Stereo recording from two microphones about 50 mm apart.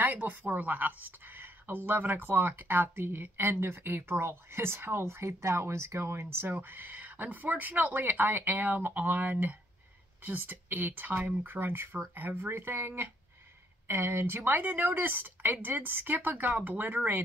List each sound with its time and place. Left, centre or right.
0.0 s speech: right
6.6 s speech: right